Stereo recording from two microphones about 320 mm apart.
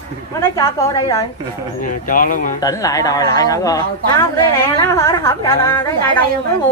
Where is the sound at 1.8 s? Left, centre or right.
Left.